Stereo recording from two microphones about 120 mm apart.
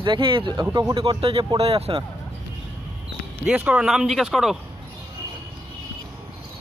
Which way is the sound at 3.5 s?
10° right (ahead or behind).